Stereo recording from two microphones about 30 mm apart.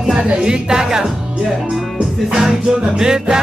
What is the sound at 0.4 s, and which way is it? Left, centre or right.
Music, right.